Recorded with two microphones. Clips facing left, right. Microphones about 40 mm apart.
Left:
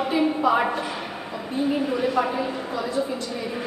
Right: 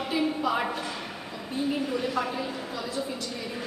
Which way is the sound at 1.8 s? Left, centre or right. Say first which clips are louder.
Left 6 dB; centre.